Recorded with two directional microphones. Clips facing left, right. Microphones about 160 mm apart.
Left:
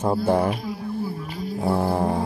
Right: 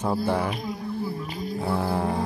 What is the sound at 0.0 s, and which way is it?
Speech, 45° left (ahead or behind).